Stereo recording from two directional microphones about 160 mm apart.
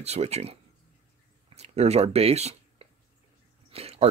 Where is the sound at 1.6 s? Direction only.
40° right (ahead or behind).